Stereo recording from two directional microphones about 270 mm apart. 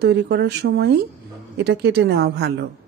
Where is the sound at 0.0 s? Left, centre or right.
Right.